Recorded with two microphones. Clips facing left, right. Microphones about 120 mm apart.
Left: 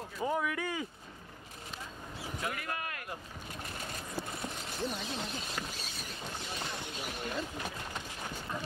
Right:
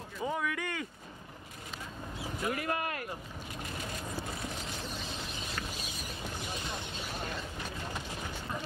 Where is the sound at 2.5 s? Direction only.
35° right (ahead or behind).